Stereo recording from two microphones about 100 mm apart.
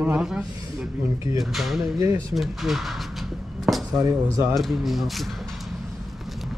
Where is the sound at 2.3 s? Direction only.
Centre (ahead or behind).